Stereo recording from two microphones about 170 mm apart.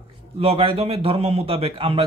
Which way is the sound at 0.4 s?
35° right (ahead or behind).